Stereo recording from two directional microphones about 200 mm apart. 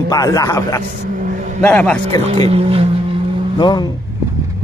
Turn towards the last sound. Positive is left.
turn(degrees=20)  # may be behind; listen again after turning